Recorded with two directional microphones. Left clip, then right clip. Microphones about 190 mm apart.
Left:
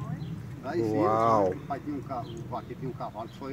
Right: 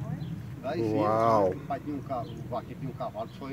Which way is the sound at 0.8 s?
Centre (ahead or behind).